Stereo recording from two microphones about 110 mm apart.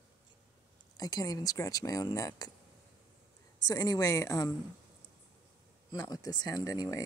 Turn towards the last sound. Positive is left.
turn(degrees=35)  # may be behind; listen again after turning